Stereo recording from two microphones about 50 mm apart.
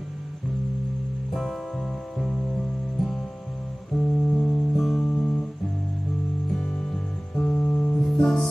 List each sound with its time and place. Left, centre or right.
1.3 s music: centre
5.0 s music: centre
6.5 s music: centre
8.0 s music: centre